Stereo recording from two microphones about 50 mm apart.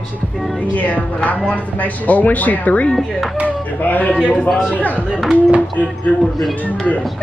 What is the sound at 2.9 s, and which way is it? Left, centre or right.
Speech, centre.